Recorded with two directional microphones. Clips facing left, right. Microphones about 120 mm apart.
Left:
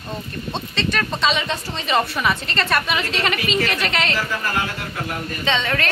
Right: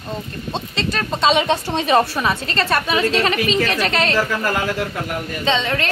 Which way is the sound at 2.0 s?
30° right (ahead or behind).